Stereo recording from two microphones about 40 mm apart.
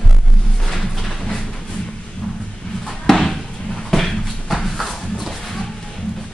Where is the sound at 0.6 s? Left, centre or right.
Centre.